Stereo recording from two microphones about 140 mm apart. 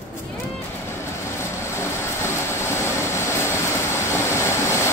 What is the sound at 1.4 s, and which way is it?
Vehicle, 20° left (ahead or behind).